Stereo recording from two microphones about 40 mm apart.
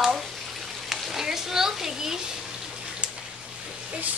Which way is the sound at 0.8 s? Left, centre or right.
Centre.